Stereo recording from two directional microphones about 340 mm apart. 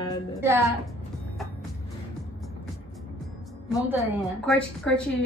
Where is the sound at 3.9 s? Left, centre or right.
Centre.